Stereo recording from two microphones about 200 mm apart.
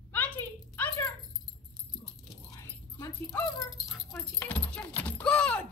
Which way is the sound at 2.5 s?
15° left (ahead or behind).